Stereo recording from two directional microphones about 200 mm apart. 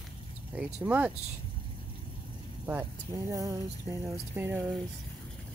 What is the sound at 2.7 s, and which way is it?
Speech, 15° right (ahead or behind).